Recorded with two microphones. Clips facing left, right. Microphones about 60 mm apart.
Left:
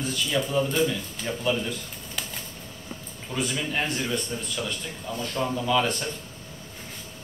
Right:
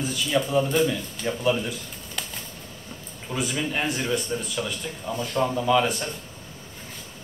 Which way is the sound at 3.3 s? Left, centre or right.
Centre.